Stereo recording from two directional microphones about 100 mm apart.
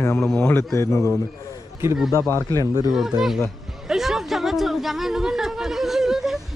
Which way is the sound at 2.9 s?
Centre (ahead or behind).